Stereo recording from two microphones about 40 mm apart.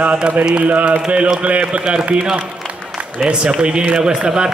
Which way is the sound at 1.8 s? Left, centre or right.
Right.